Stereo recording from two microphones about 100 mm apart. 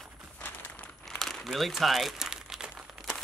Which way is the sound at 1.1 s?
5° left (ahead or behind).